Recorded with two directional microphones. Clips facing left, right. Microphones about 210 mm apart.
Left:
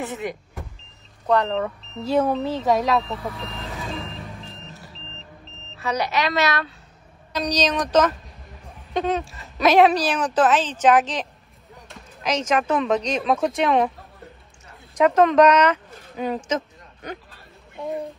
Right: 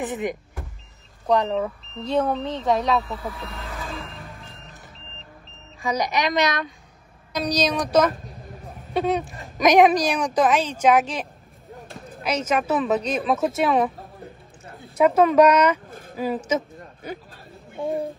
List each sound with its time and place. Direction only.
0.0 s speech: 15° right (ahead or behind); by 4.2 s centre (ahead or behind)
5.8 s speech: 10° right (ahead or behind)
15.0 s speech: 10° right (ahead or behind)